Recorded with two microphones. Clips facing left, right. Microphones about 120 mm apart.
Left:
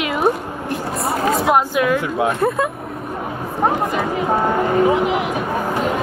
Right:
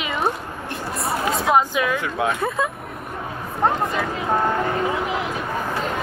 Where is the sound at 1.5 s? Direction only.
5° left (ahead or behind).